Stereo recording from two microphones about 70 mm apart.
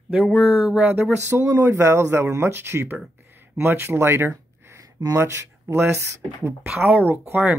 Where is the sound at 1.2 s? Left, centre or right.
Right.